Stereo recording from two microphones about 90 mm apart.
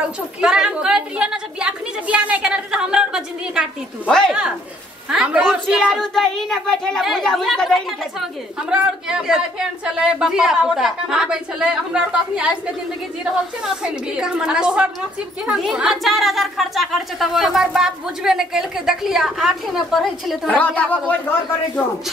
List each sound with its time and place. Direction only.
0.4 s a woman's voice: 10° right (ahead or behind)
5.9 s speech: centre (ahead or behind)
8.6 s a woman's voice: 10° right (ahead or behind)
20.4 s speech: 15° left (ahead or behind)